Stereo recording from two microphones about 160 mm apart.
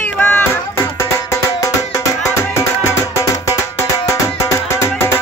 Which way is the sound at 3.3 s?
20° left (ahead or behind).